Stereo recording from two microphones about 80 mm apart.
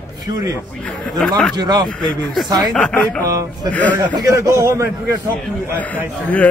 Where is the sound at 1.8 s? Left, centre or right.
Centre.